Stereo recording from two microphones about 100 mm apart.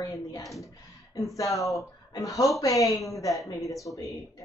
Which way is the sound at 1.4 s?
35° left (ahead or behind).